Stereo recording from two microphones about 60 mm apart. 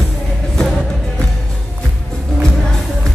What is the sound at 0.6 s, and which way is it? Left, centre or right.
Music, centre.